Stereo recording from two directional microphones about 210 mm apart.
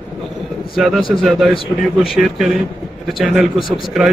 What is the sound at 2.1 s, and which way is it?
A man's voice, centre (ahead or behind).